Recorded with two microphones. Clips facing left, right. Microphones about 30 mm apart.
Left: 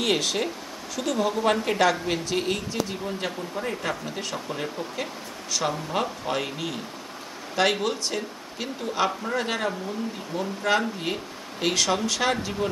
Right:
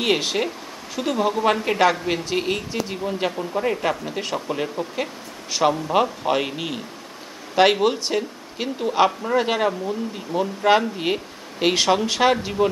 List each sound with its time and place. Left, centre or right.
0.0 s a woman's voice: right